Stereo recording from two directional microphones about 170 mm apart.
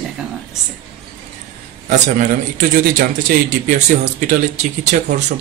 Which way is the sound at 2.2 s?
50° right (ahead or behind).